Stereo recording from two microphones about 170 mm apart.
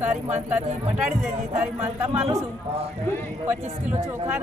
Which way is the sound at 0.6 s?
40° right (ahead or behind).